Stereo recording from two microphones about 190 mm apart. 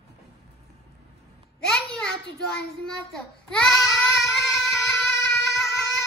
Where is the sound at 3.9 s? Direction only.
15° left (ahead or behind).